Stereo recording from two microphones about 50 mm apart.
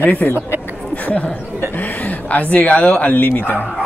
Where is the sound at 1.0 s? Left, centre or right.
Left.